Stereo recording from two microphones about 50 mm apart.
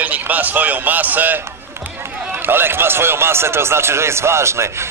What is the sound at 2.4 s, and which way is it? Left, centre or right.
Speech, right.